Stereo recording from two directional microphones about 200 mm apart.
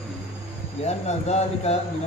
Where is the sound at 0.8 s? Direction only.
35° left (ahead or behind).